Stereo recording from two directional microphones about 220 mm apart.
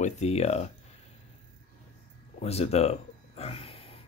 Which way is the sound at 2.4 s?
30° left (ahead or behind).